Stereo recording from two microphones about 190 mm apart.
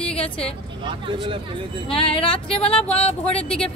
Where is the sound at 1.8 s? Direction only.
30° left (ahead or behind).